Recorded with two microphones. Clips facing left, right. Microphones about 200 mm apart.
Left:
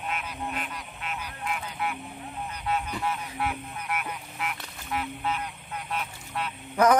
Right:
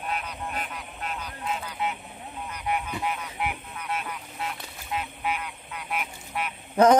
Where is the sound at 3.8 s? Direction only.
25° right (ahead or behind); by 6.5 s 10° right (ahead or behind).